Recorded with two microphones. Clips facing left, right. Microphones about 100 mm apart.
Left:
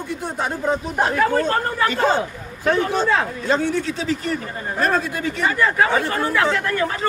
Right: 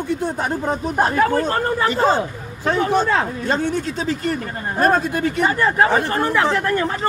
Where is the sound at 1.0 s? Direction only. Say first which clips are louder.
Right 4 dB; 40° right (ahead or behind).